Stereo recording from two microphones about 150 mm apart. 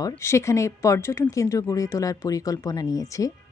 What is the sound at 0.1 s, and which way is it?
Speech, 15° left (ahead or behind).